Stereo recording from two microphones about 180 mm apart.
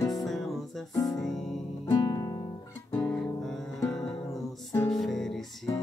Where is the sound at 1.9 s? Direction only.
20° left (ahead or behind).